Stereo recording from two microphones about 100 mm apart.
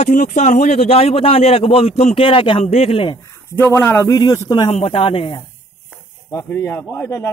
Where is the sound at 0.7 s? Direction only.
90° left; by 3.2 s 65° left (ahead or behind).